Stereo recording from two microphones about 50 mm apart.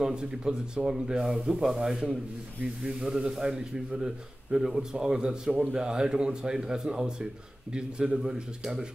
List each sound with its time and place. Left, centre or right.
0.0 s a man's voice: centre